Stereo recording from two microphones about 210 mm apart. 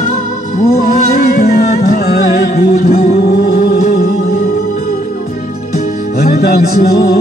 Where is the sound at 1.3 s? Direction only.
45° left (ahead or behind).